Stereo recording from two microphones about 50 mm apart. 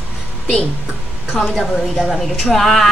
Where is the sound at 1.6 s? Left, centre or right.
Centre.